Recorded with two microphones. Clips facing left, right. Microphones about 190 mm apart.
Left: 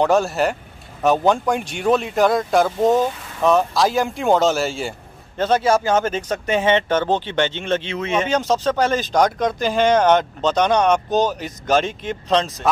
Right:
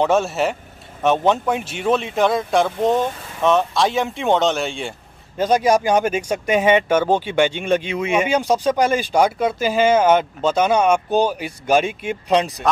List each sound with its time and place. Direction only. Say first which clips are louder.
0.0 s speech: left 1 dB; centre (ahead or behind)
5.4 s speech: right 1 dB; 15° right (ahead or behind)